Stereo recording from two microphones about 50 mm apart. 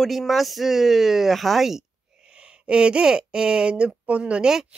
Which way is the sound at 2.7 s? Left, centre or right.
Centre.